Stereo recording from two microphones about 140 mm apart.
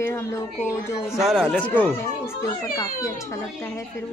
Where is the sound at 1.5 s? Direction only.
10° left (ahead or behind).